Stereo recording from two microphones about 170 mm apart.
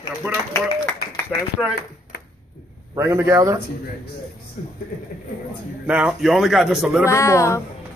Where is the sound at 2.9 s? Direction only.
15° right (ahead or behind).